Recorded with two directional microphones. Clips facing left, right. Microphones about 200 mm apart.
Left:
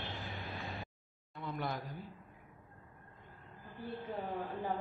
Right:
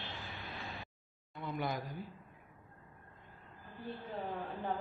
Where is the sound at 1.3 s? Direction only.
Centre (ahead or behind).